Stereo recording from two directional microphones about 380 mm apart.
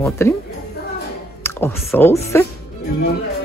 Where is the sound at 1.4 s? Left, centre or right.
Centre.